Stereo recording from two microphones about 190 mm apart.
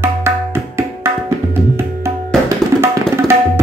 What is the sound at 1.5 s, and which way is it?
Music, 15° right (ahead or behind).